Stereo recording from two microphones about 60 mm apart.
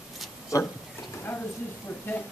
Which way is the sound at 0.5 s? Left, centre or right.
Left.